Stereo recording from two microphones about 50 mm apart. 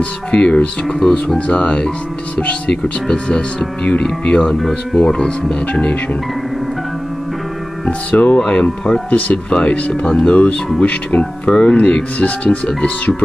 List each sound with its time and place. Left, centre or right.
0.3 s speech: left
0.8 s speech: centre
1.5 s speech: left
4.5 s speech: centre
4.9 s speech: centre
7.8 s speech: left